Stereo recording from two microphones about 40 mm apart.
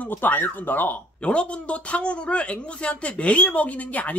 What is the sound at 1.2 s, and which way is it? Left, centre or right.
Speech, left.